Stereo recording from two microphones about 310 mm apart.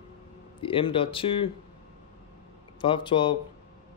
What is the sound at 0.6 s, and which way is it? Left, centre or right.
Speech, centre.